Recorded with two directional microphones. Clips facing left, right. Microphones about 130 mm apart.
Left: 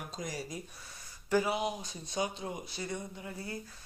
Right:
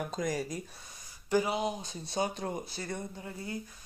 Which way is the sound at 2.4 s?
45° right (ahead or behind).